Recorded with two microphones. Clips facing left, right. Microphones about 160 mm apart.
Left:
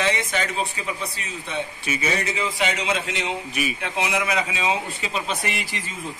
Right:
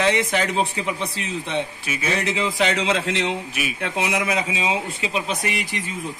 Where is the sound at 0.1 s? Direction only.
90° right.